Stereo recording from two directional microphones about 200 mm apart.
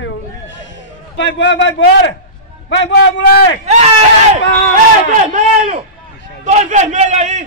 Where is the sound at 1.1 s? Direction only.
65° left (ahead or behind).